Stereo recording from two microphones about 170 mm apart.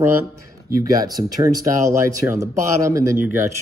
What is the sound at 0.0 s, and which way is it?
Speech, 15° right (ahead or behind).